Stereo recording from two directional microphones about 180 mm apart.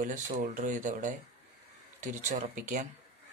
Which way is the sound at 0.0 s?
45° right (ahead or behind).